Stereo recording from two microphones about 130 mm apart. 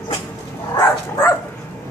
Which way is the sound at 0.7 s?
25° left (ahead or behind).